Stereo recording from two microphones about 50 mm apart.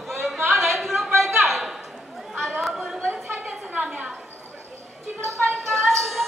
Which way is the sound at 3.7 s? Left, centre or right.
Right.